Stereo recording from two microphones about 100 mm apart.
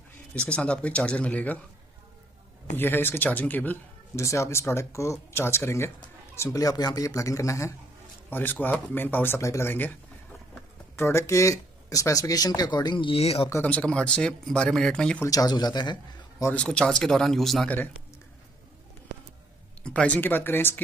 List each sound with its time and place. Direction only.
0.3 s speech: 10° left (ahead or behind)
2.8 s speech: 20° left (ahead or behind)
4.2 s speech: 30° left (ahead or behind)
8.3 s speech: 20° left (ahead or behind)
11.0 s speech: 25° left (ahead or behind); by 13.5 s 80° left
13.7 s speech: 10° left (ahead or behind)
15.2 s a man's voice: 40° left (ahead or behind)
16.5 s speech: 10° left (ahead or behind)
19.8 s speech: 10° left (ahead or behind)